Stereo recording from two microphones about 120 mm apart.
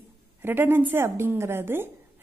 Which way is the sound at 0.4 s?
15° right (ahead or behind).